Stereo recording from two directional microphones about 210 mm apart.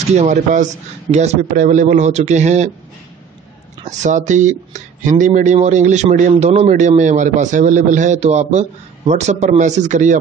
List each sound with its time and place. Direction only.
0.1 s speech: 35° right (ahead or behind)
3.8 s speech: 35° right (ahead or behind)